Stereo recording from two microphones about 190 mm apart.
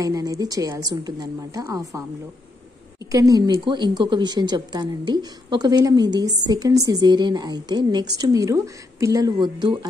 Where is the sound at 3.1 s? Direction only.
20° right (ahead or behind).